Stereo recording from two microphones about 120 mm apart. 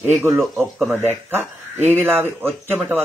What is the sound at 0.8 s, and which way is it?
Speech, 15° right (ahead or behind).